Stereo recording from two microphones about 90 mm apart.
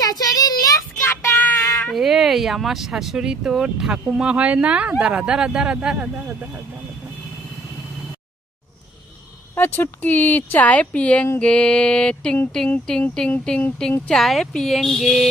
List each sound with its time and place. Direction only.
0.0 s child singing: 45° left (ahead or behind)
1.0 s child singing: 20° left (ahead or behind)
2.0 s speech: 5° right (ahead or behind)
9.6 s speech: 20° left (ahead or behind)
14.0 s speech: centre (ahead or behind)